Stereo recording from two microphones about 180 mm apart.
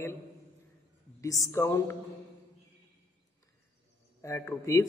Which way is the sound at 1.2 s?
15° left (ahead or behind).